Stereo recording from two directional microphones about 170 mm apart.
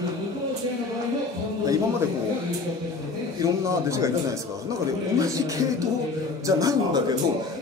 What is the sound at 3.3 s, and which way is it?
Speech, 15° right (ahead or behind).